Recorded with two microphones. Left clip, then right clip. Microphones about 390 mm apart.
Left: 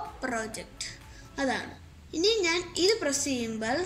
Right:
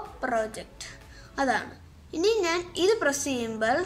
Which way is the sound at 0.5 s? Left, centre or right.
Right.